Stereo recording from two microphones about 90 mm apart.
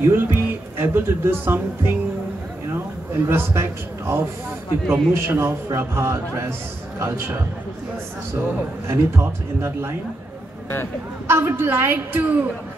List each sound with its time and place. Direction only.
0.0 s a man's voice: 25° right (ahead or behind)
11.2 s speech: 30° right (ahead or behind)